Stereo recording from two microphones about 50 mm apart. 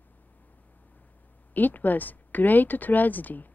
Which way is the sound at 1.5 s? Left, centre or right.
Left.